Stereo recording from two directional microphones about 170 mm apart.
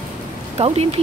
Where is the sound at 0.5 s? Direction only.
35° right (ahead or behind).